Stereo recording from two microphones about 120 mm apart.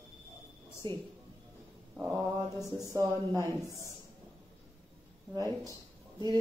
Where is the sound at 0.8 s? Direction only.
40° right (ahead or behind).